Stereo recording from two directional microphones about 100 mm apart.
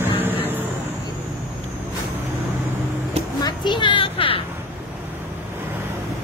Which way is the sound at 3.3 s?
45° left (ahead or behind).